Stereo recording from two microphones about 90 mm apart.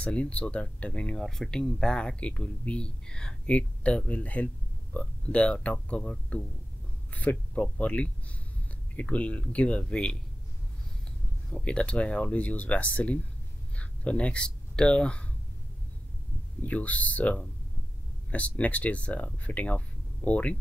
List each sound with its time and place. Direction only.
0.0 s speech: 15° left (ahead or behind)
11.5 s speech: 10° left (ahead or behind)
16.6 s speech: 15° left (ahead or behind)